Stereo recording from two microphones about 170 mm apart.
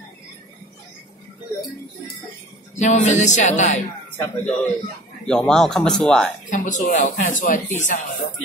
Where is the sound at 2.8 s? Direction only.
45° left (ahead or behind).